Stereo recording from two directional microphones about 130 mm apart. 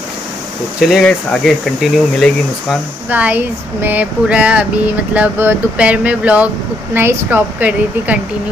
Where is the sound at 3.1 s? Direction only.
10° right (ahead or behind).